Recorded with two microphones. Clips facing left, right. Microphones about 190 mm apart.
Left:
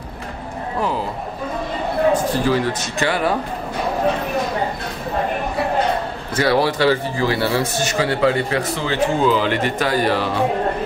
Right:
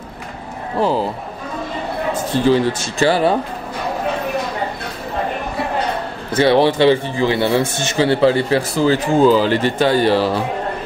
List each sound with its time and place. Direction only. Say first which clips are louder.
0.7 s a man's voice: right 5 dB; 30° right (ahead or behind)
2.3 s speech: right 4 dB; 25° right (ahead or behind)
6.3 s speech: right 4 dB; 25° right (ahead or behind)